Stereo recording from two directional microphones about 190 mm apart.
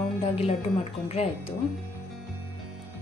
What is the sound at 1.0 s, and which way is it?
Speech, 35° left (ahead or behind).